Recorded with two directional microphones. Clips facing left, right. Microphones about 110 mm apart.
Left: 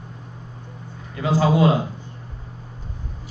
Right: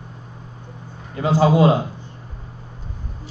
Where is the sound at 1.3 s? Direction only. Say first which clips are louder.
Right 2 dB; 25° right (ahead or behind).